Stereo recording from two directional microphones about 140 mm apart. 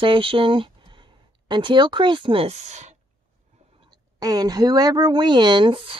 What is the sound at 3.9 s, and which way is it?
Speech, 25° right (ahead or behind).